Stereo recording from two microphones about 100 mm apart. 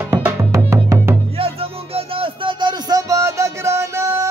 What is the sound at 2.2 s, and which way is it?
Music, 55° right (ahead or behind).